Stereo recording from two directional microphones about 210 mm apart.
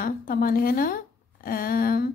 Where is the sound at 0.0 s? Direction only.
45° left (ahead or behind).